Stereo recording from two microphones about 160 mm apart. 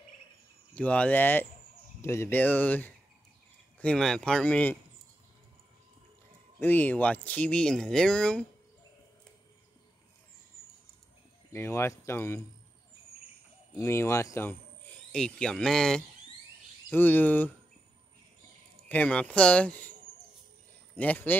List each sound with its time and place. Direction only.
0.7 s speech: 10° left (ahead or behind)
6.6 s speech: 10° left (ahead or behind)
11.5 s speech: 15° left (ahead or behind)
13.7 s speech: 15° left (ahead or behind)
15.1 s speech: 5° left (ahead or behind)
18.9 s speech: 10° left (ahead or behind)
20.9 s speech: 10° left (ahead or behind)